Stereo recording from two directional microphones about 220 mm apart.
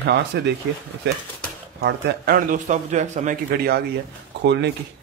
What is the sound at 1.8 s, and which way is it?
Speech, 40° right (ahead or behind).